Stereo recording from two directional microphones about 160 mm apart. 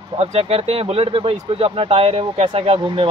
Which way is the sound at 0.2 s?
40° right (ahead or behind).